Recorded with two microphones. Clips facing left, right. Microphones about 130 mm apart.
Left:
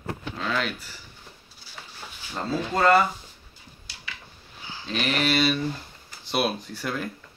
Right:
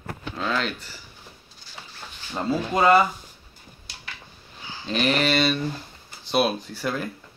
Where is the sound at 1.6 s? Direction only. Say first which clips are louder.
Right 1 dB; 5° left (ahead or behind).